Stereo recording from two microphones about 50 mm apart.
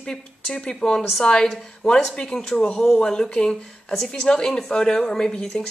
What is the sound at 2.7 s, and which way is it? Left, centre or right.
Speech, centre.